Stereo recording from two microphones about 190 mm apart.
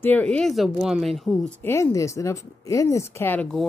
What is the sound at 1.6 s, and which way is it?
Speech, 15° left (ahead or behind).